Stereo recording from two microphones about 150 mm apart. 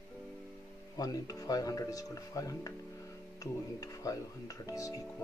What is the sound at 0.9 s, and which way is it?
Speech, 25° left (ahead or behind).